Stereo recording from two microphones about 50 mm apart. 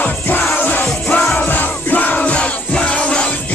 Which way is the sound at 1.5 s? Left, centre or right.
Left.